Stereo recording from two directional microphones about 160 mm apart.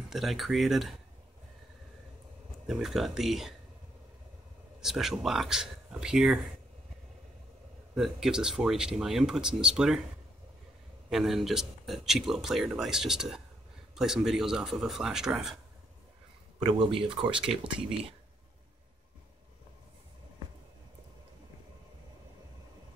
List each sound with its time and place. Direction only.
0.1 s speech: centre (ahead or behind)
2.6 s speech: 5° right (ahead or behind)
4.7 s speech: centre (ahead or behind)
7.9 s speech: centre (ahead or behind)
11.1 s speech: centre (ahead or behind)
16.6 s speech: 30° right (ahead or behind)